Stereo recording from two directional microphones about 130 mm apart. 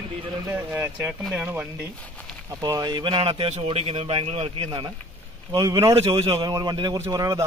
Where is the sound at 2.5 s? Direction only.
25° right (ahead or behind); by 4.7 s 50° right (ahead or behind).